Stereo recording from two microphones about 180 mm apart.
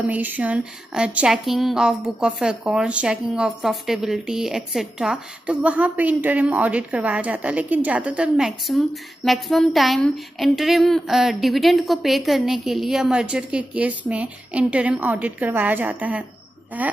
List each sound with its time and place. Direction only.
0.0 s a woman's voice: 10° right (ahead or behind)